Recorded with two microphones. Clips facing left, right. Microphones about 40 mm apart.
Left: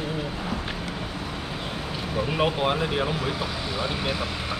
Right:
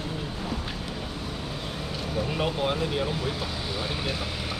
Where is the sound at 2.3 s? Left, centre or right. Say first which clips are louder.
Left 4 dB; left.